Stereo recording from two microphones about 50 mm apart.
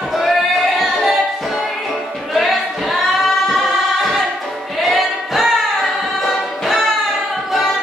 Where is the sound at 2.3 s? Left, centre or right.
Centre.